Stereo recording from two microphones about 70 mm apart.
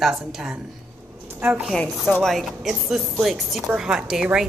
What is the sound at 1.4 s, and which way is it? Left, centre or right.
Speech, right.